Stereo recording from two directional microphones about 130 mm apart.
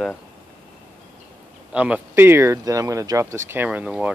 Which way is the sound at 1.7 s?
10° right (ahead or behind).